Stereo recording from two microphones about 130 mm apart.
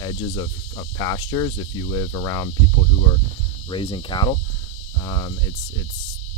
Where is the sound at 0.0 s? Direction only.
35° left (ahead or behind).